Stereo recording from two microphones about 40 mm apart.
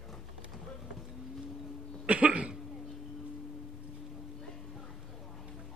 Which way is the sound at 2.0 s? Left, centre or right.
Right.